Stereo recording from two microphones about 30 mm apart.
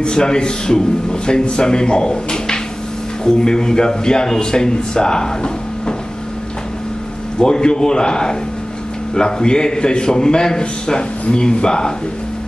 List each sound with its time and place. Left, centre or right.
0.0 s speech: left
7.3 s speech: left